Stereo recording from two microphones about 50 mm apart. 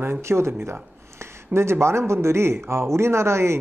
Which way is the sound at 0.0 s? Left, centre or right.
Right.